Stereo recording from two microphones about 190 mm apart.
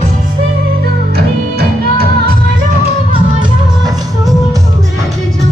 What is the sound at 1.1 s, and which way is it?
Music, 55° right (ahead or behind).